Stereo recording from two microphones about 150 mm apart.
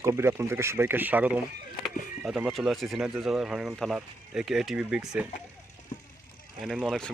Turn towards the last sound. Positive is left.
turn(degrees=0)  # may be behind; listen again after turning